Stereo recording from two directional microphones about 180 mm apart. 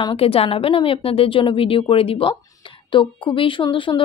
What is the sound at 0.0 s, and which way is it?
A woman's voice, 30° left (ahead or behind).